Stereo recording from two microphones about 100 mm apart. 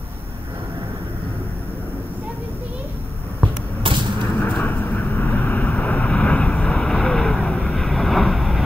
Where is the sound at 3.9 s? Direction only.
60° right (ahead or behind).